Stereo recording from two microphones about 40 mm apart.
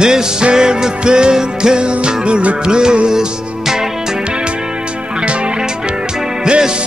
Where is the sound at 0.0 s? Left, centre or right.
Right.